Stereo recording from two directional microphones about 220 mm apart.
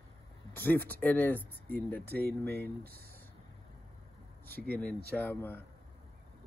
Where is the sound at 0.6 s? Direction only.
10° left (ahead or behind).